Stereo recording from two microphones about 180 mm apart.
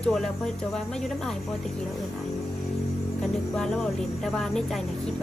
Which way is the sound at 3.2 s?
5° left (ahead or behind).